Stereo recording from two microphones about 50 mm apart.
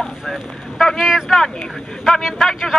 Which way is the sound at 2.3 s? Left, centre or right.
Centre.